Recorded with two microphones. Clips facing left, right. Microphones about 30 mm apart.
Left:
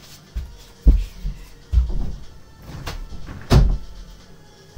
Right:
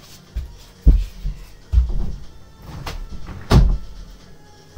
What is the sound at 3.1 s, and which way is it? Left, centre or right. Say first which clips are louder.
Music: right 1 dB; centre.